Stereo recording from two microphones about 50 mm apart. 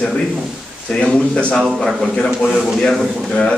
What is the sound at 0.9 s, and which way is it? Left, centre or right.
Speech, centre.